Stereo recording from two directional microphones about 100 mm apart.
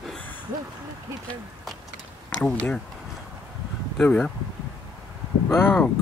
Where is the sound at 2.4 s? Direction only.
10° left (ahead or behind).